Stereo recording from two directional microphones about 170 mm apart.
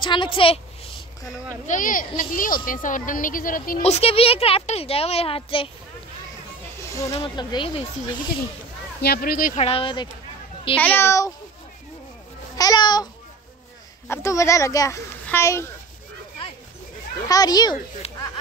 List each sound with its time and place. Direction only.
0.0 s a woman's voice: 30° left (ahead or behind)
1.7 s speech: 50° left (ahead or behind)
3.8 s speech: 35° left (ahead or behind)
6.8 s snake: 15° left (ahead or behind)
7.1 s speech: 30° left (ahead or behind)
9.0 s speech: 65° left (ahead or behind)
9.6 s speech: 35° left (ahead or behind)
10.8 s a child's voice: 10° left (ahead or behind)
12.5 s a woman's voice: 20° left (ahead or behind)
17.3 s a woman's voice: 25° left (ahead or behind)